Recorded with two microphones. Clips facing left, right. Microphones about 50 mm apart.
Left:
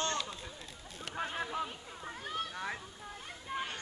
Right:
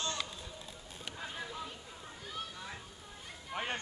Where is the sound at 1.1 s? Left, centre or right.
Left.